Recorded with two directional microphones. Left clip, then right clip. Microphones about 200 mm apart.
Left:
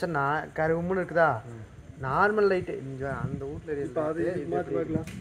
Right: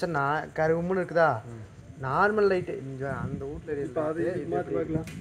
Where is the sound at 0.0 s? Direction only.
55° right (ahead or behind).